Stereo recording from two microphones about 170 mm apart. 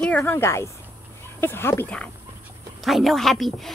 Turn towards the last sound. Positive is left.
turn(degrees=0)  # may be behind; listen again after turning